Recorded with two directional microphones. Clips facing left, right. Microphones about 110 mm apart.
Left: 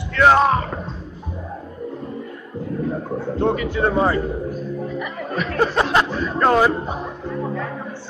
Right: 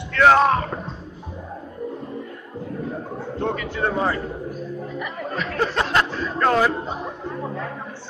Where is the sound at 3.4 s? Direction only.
15° left (ahead or behind).